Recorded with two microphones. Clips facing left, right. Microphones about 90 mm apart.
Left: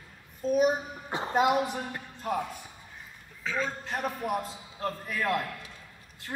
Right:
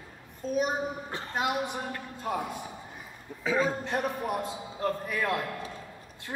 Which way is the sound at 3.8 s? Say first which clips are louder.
Right 1 dB; centre (ahead or behind).